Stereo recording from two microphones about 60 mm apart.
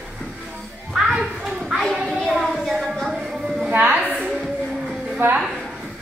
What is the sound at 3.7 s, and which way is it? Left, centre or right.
Speech, right.